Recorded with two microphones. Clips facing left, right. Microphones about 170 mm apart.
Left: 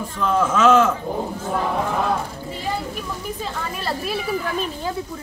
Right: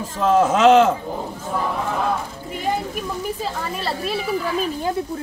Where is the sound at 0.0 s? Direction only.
40° right (ahead or behind).